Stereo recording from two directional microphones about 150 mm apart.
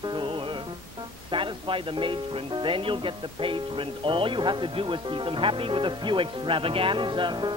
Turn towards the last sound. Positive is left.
turn(degrees=-30)  # may be behind; listen again after turning